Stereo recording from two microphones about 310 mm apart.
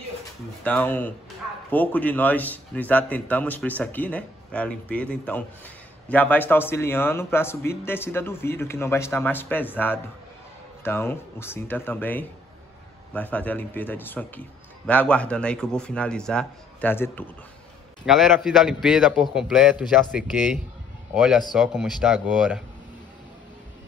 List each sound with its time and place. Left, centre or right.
0.7 s a man's voice: centre